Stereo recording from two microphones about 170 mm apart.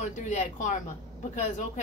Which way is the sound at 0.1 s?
45° left (ahead or behind).